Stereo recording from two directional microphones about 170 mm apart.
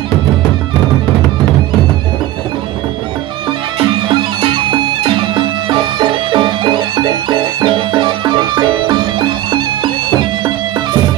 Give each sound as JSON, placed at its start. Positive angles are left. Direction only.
{"t": 3.9, "sound": "music", "side_deg": -30}